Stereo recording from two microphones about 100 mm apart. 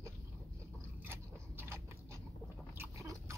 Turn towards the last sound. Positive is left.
turn(degrees=-30)  # may be behind; listen again after turning